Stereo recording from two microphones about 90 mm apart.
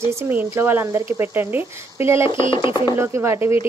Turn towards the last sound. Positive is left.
turn(degrees=-25)  # may be behind; listen again after turning